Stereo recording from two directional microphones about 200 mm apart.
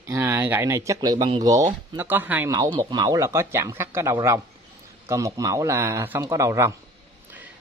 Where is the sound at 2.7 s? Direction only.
20° right (ahead or behind).